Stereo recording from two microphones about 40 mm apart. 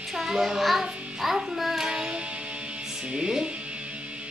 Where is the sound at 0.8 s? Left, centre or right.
Right.